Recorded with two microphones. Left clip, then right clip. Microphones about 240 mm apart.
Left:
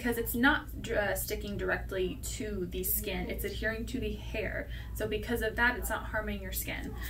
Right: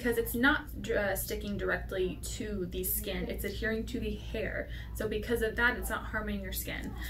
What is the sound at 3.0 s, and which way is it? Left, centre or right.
A woman's voice, centre.